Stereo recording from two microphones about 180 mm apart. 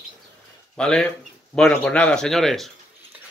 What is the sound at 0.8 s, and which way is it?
Speech, 5° left (ahead or behind).